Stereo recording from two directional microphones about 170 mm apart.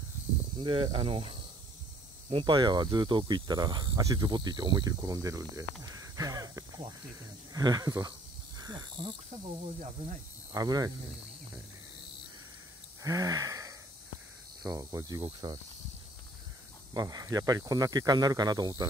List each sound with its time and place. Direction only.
0.6 s speech: 30° right (ahead or behind)
10.5 s speech: 20° right (ahead or behind)
13.0 s gasp: 20° right (ahead or behind)
14.6 s speech: 20° right (ahead or behind)
16.9 s speech: 20° right (ahead or behind)